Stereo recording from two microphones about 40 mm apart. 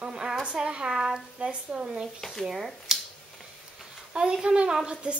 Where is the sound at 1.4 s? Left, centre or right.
Right.